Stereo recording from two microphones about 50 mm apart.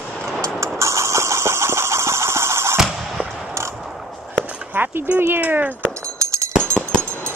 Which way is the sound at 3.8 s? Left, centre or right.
Centre.